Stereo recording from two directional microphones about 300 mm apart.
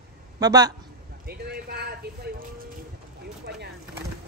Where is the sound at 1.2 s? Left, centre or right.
Right.